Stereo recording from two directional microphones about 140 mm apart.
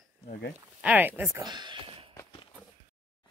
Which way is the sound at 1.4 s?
30° right (ahead or behind).